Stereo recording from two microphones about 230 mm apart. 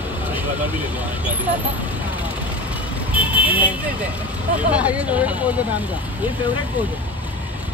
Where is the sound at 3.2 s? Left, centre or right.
Centre.